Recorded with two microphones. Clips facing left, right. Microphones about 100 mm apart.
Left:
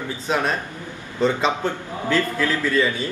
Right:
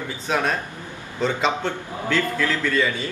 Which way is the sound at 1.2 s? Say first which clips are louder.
Left 2 dB; 5° left (ahead or behind).